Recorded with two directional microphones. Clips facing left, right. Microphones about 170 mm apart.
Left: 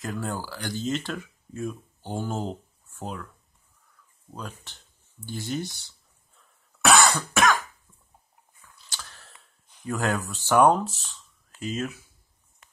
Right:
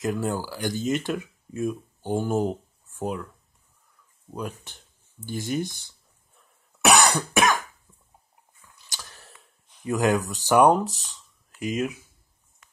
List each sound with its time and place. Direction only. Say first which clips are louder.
0.0 s speech: right 5 dB; 15° right (ahead or behind)
4.3 s speech: right 6 dB; 15° right (ahead or behind)
5.9 s cough: right 1 dB; 15° right (ahead or behind)
8.7 s a sound: even; 15° right (ahead or behind)
11.6 s speech: right 4 dB; 15° right (ahead or behind)